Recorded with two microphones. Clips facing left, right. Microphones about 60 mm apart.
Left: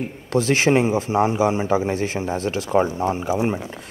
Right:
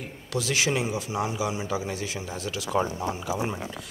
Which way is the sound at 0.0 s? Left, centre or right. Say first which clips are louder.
Left 9 dB; left.